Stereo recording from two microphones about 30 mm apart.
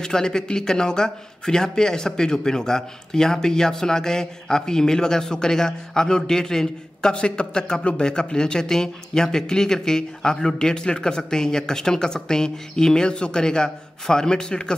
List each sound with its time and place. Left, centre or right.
0.0 s speech: left
7.2 s speech: left